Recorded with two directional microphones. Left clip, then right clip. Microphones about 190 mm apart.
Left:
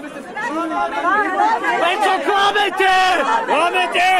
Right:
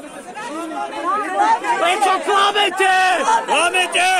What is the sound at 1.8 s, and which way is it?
Speech, 45° right (ahead or behind).